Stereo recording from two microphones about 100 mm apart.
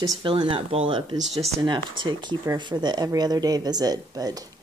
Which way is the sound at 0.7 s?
65° right (ahead or behind).